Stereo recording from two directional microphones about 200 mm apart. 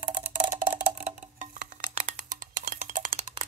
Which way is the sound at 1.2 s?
40° right (ahead or behind).